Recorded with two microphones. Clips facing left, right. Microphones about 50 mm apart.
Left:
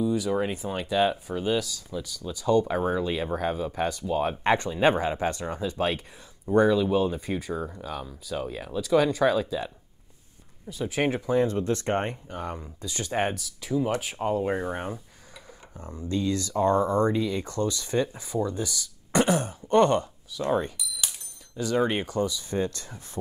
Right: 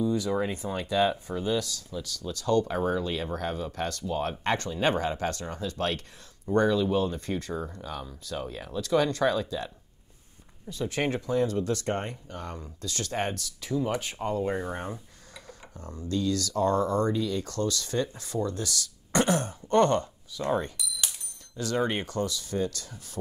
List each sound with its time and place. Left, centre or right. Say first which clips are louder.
0.7 s speech: left 1 dB; centre
10.7 s speech: left 2 dB; centre; by 12.4 s left
12.4 s speech: left 4 dB; centre
20.3 s speech: left 2 dB; centre
22.5 s speech: left 2 dB; left